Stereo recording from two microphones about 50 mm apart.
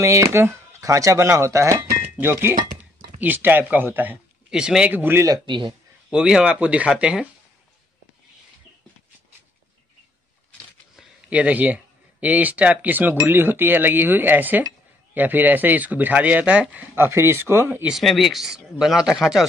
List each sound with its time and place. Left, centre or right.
0.0 s speech: right
3.2 s speech: right
4.5 s speech: centre
4.8 s speech: right
6.0 s speech: centre
11.2 s speech: right
16.9 s speech: right
18.0 s speech: centre